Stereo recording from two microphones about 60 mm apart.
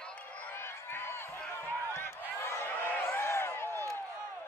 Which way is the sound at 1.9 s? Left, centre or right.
Left.